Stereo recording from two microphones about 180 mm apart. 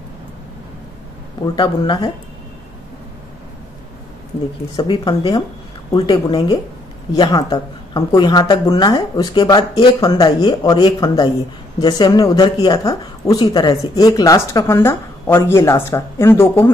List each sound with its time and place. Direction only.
1.4 s speech: 25° left (ahead or behind)
4.7 s speech: 25° left (ahead or behind)